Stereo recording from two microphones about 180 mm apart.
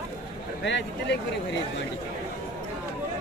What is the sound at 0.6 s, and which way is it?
Speech, 75° left (ahead or behind).